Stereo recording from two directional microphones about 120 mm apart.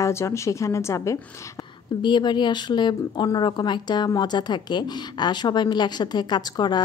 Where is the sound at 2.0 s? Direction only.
40° left (ahead or behind).